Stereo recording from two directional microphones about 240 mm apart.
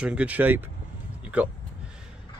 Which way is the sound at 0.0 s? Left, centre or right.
Centre.